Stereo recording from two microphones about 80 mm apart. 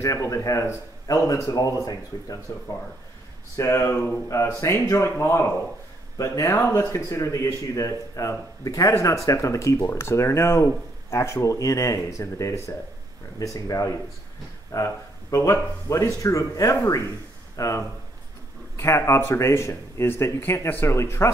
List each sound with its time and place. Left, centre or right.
0.0 s speech: left
3.5 s speech: left